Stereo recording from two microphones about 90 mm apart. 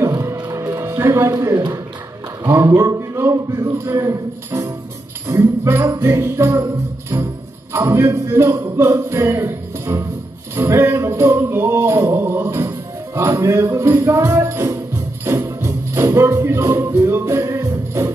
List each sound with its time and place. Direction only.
0.1 s music: 40° right (ahead or behind)
2.4 s speech: 30° right (ahead or behind)
5.9 s jingle bell: 30° right (ahead or behind)
7.7 s music: 30° right (ahead or behind)
12.2 s music: 20° right (ahead or behind)
12.4 s music: 30° right (ahead or behind)